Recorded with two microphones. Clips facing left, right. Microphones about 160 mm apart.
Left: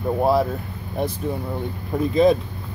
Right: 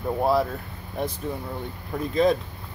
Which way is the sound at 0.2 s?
25° left (ahead or behind).